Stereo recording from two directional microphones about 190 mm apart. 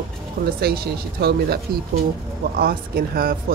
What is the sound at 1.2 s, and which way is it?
Speech, 55° right (ahead or behind).